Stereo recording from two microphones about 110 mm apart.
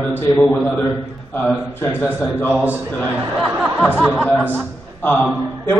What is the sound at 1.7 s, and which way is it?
Speech, 20° left (ahead or behind).